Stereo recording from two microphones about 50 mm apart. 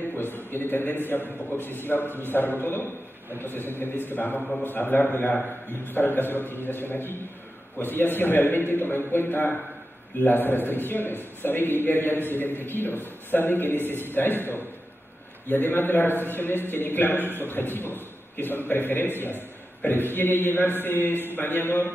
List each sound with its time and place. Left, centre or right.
0.1 s a man's voice: left